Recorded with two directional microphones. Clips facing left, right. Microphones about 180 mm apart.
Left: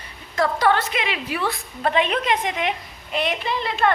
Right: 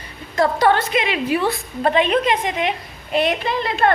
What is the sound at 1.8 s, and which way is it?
Speech, 35° right (ahead or behind).